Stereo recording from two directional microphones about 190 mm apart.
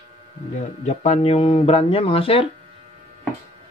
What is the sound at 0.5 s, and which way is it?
Speech, 35° left (ahead or behind).